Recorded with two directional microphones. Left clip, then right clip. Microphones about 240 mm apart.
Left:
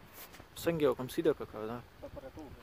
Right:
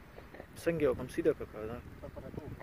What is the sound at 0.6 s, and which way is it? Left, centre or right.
Speech, centre.